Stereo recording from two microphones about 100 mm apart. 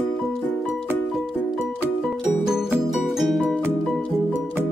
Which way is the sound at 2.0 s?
5° right (ahead or behind).